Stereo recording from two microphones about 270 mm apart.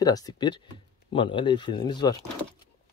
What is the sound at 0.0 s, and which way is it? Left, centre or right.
Speech, centre.